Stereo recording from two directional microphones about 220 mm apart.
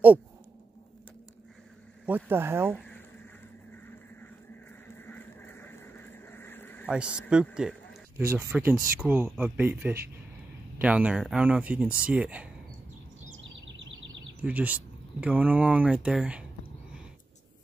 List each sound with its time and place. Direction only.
2.0 s speech: 10° right (ahead or behind)
2.7 s speech: 5° left (ahead or behind)
4.8 s vehicle: 10° left (ahead or behind)
6.9 s speech: 5° right (ahead or behind)
13.4 s a sound: 55° right (ahead or behind)
14.4 s speech: 5° right (ahead or behind)